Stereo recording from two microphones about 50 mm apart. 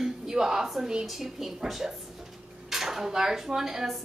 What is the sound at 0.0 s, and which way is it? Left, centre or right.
Speech, centre.